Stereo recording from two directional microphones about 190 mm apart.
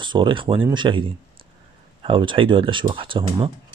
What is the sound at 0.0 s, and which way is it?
Speech, 25° right (ahead or behind).